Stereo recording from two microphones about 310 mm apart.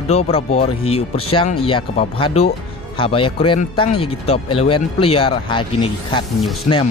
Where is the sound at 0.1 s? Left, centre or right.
Centre.